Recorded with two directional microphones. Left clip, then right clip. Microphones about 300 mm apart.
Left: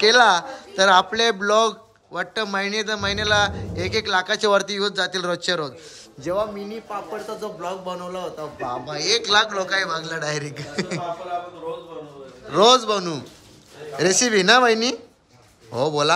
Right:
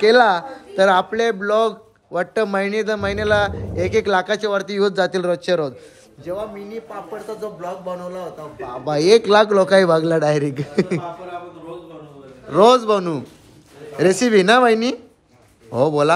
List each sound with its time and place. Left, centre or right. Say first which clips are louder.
0.0 s a man's voice: right 2 dB; centre
6.3 s a man's voice: left 3 dB; left
7.6 s a man's voice: right 1 dB; centre
8.8 s a man's voice: right 10 dB; centre
12.4 s a man's voice: right 3 dB; centre